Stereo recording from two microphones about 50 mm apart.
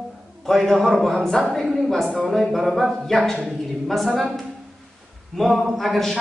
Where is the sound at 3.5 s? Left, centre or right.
Centre.